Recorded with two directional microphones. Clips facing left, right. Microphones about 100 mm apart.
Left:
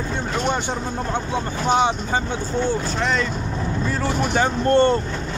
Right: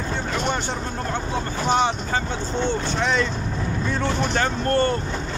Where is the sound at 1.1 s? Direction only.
15° left (ahead or behind).